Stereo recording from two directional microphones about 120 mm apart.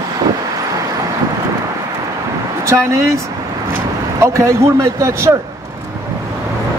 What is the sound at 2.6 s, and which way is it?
Speech, 25° right (ahead or behind).